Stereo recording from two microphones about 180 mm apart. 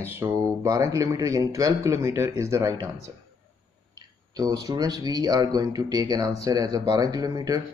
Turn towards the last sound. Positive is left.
turn(degrees=-20)  # may be behind; listen again after turning